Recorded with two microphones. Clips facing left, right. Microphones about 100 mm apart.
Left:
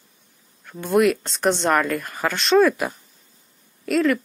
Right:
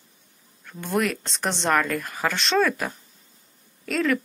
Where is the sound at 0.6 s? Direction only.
5° left (ahead or behind).